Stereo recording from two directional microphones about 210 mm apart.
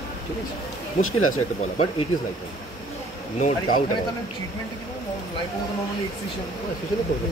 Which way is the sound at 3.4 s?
40° left (ahead or behind).